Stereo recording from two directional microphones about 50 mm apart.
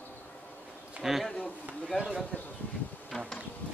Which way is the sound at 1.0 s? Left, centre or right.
Centre.